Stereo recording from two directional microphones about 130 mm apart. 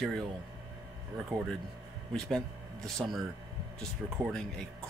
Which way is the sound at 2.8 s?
5° left (ahead or behind).